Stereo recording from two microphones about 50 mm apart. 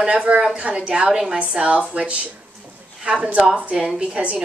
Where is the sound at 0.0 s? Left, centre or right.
Right.